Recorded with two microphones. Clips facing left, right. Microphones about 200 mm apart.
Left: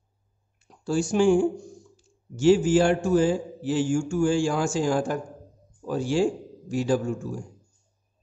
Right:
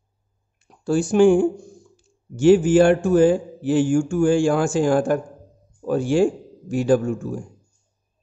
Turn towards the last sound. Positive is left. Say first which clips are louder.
# right 6 dB
turn(degrees=-55)  # may be behind; listen again after turning